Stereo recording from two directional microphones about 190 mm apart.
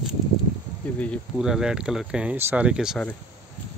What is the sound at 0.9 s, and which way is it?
Speech, 5° left (ahead or behind).